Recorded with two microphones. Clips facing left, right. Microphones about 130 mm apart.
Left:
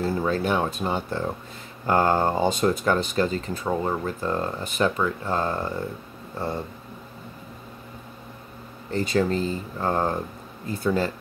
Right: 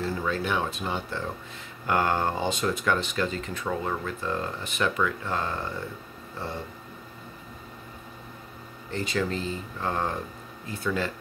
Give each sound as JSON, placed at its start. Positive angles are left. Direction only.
{"t": 0.0, "sound": "speech", "side_deg": 40}
{"t": 8.9, "sound": "speech", "side_deg": 40}